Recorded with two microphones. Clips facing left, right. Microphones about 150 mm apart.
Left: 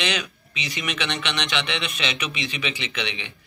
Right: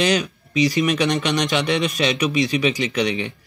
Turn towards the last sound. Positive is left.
turn(degrees=-40)  # may be behind; listen again after turning